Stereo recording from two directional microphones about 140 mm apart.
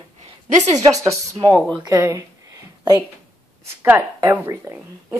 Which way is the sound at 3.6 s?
15° right (ahead or behind).